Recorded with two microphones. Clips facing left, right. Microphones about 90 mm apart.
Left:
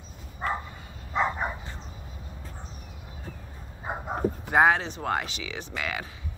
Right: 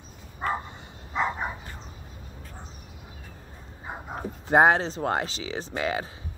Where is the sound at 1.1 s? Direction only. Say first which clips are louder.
Left 1 dB; centre (ahead or behind).